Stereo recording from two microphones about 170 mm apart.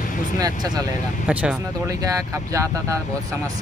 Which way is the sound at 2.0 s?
20° right (ahead or behind).